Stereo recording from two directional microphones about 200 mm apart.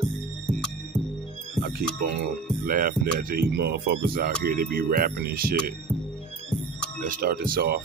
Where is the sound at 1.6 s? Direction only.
50° right (ahead or behind).